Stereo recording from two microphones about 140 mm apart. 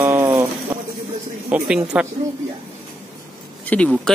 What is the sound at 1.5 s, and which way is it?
Speech, 5° right (ahead or behind).